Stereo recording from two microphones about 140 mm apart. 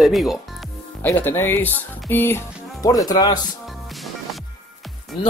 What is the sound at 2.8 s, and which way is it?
Speech, 25° left (ahead or behind).